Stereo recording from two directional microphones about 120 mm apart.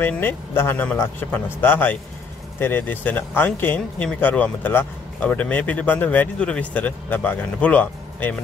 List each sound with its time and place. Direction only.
0.0 s speech: 15° left (ahead or behind)